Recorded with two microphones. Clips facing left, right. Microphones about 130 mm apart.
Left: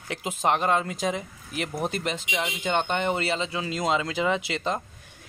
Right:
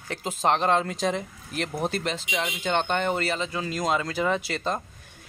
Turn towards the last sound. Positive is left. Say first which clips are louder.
# even
turn(degrees=20)  # may be behind; listen again after turning